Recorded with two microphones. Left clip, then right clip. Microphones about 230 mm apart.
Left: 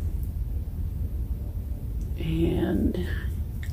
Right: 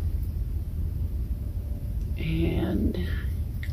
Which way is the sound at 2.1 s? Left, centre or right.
Centre.